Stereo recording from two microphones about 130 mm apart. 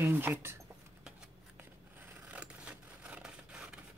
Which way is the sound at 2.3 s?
10° right (ahead or behind).